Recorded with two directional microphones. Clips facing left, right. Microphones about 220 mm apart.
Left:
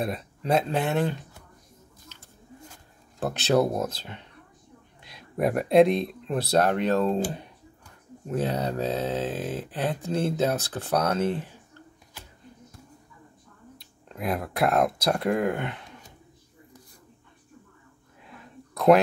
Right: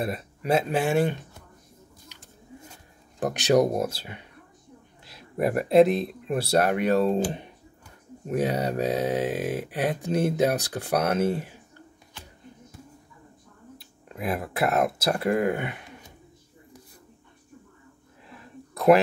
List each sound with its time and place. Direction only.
0.0 s speech: 5° right (ahead or behind)
3.2 s speech: 15° right (ahead or behind)
13.7 s speech: centre (ahead or behind)